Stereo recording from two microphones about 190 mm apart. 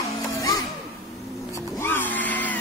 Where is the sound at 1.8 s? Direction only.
10° left (ahead or behind).